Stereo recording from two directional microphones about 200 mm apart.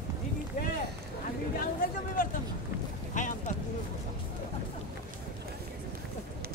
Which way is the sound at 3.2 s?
40° left (ahead or behind).